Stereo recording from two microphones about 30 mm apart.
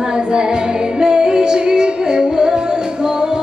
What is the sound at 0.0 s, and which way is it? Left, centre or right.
Music, right.